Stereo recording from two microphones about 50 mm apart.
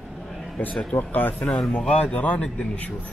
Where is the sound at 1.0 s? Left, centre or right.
Left.